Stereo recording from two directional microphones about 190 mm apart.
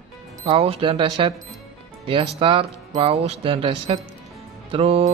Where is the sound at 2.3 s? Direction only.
25° right (ahead or behind).